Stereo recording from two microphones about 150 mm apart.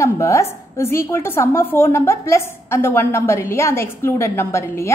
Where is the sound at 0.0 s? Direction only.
20° left (ahead or behind).